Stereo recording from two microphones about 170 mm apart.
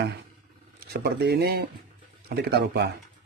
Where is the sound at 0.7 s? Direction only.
70° right (ahead or behind).